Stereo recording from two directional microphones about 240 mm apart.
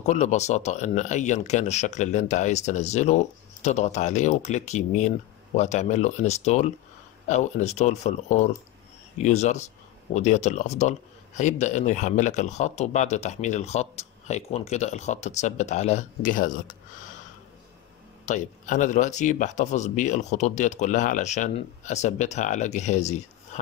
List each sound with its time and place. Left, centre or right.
0.0 s speech: left
18.2 s speech: left